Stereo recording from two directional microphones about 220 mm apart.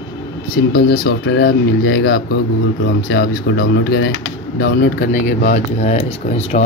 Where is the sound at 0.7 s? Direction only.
45° left (ahead or behind).